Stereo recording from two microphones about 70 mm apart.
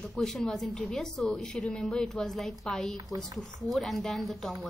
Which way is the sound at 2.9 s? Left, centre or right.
Right.